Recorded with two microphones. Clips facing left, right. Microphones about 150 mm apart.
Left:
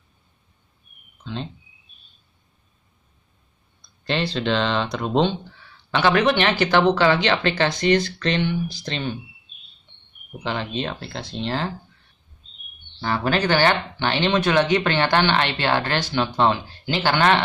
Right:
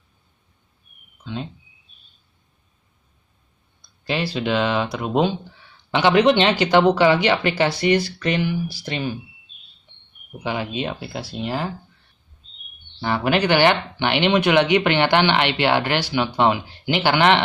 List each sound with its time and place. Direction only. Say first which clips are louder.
1.2 s speech: right 1 dB; 5° right (ahead or behind)
3.8 s speech: even; 5° right (ahead or behind)
10.3 s speech: right 1 dB; 10° right (ahead or behind)
13.0 s speech: right 2 dB; 15° right (ahead or behind)